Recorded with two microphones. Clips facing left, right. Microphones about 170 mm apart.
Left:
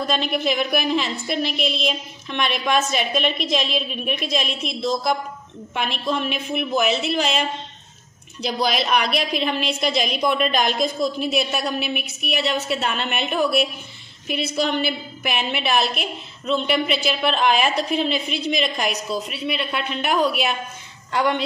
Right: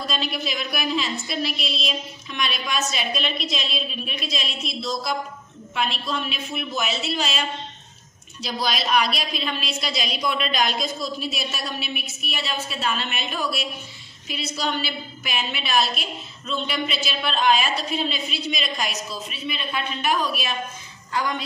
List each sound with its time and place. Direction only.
0.0 s a woman's voice: 55° left (ahead or behind)
8.5 s a woman's voice: 60° left (ahead or behind)